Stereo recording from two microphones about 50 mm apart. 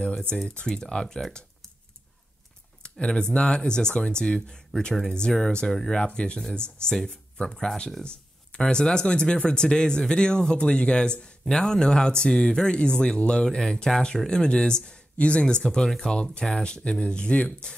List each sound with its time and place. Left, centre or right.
0.7 s speech: centre
2.8 s speech: centre